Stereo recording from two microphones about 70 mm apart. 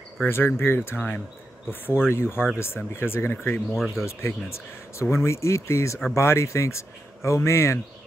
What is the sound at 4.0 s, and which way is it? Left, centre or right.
Speech, left.